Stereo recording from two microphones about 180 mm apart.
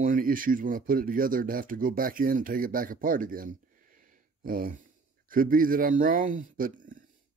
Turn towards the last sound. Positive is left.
turn(degrees=-45)  # may be behind; listen again after turning